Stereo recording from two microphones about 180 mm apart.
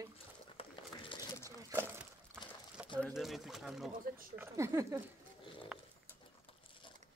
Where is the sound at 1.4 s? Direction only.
15° right (ahead or behind).